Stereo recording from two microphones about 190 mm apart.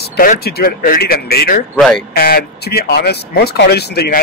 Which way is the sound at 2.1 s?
55° left (ahead or behind).